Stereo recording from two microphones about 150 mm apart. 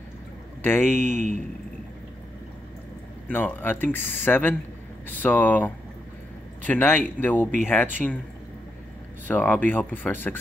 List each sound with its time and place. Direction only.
0.6 s a man's voice: 15° left (ahead or behind)
0.9 s speech: 55° right (ahead or behind)
3.3 s speech: 10° left (ahead or behind)
9.3 s speech: 10° left (ahead or behind)